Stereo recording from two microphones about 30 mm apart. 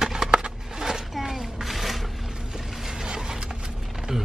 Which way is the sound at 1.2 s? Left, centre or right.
Centre.